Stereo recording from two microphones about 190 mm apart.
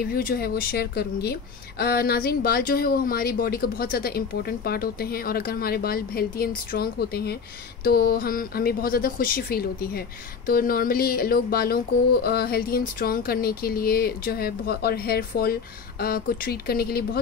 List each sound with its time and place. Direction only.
0.0 s speech: 50° left (ahead or behind)